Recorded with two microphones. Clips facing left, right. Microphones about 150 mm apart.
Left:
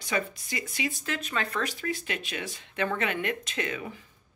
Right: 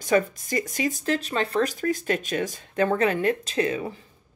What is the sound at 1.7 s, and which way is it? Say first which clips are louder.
Speech: right 8 dB; 45° right (ahead or behind).